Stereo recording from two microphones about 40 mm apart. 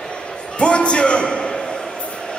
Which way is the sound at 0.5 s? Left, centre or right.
Left.